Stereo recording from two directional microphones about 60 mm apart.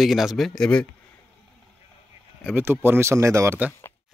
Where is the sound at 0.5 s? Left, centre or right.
Centre.